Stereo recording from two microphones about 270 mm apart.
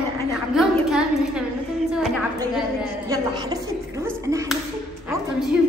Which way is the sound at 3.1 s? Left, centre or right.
Centre.